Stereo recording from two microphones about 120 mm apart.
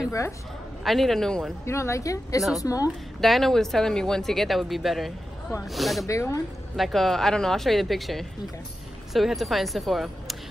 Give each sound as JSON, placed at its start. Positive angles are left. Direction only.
{"t": 0.8, "sound": "speech", "side_deg": 0}
{"t": 1.7, "sound": "speech", "side_deg": 25}
{"t": 3.2, "sound": "speech", "side_deg": 0}
{"t": 6.0, "sound": "speech", "side_deg": 25}
{"t": 6.8, "sound": "speech", "side_deg": 0}